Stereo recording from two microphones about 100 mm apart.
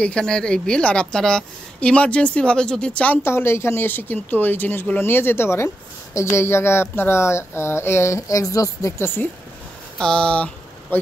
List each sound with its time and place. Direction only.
0.0 s a woman's voice: 10° left (ahead or behind)
3.3 s a woman's voice: 25° left (ahead or behind)
9.9 s speech: 10° left (ahead or behind)